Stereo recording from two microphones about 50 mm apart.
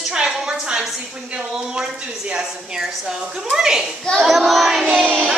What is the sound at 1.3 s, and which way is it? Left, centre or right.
Speech, centre.